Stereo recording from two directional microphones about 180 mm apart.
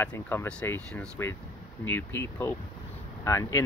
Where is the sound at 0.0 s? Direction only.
10° left (ahead or behind).